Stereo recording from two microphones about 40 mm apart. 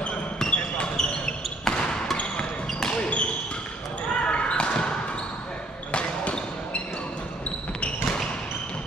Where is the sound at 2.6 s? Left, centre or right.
Centre.